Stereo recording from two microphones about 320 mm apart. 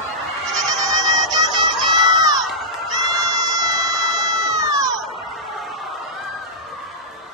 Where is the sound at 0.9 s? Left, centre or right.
Centre.